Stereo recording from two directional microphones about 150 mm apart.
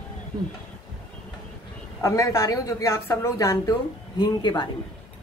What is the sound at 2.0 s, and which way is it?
A woman's voice, 20° left (ahead or behind).